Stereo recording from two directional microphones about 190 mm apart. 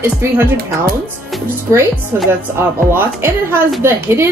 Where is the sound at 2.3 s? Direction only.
10° right (ahead or behind).